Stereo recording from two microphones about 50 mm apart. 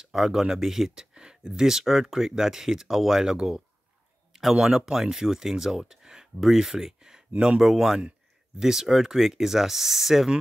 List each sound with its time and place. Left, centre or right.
0.0 s speech: centre
1.1 s speech: centre